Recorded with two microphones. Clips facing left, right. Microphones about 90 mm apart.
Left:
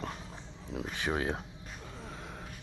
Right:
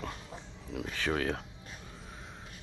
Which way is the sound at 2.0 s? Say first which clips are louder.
Left 4 dB; 80° left.